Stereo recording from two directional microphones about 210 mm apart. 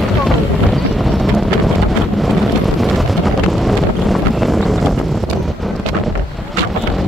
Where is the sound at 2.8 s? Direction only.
Centre (ahead or behind).